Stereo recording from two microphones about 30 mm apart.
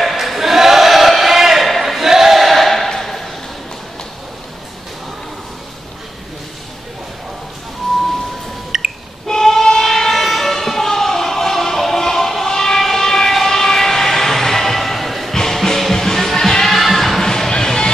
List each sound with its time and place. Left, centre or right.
0.0 s a sound: centre
8.7 s a sound: centre
9.3 s train: centre
10.2 s music: centre
15.3 s music: centre
17.3 s music: left